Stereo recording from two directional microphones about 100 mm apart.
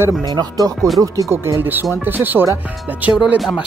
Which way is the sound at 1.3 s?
25° right (ahead or behind).